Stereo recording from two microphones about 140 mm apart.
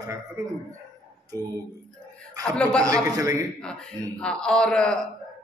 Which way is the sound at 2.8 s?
25° right (ahead or behind).